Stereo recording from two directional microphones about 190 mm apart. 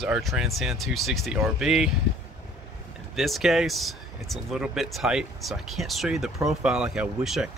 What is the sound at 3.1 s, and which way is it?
Speech, centre (ahead or behind).